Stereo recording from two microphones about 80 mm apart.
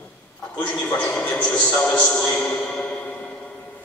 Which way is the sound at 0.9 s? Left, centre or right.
Centre.